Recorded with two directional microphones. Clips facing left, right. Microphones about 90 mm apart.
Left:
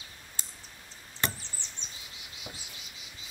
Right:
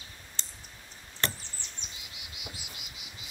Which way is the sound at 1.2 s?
15° left (ahead or behind).